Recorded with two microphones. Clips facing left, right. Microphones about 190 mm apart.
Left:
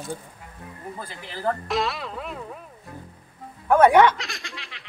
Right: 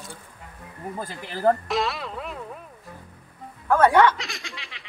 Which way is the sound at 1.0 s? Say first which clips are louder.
Right 7 dB; 45° right (ahead or behind).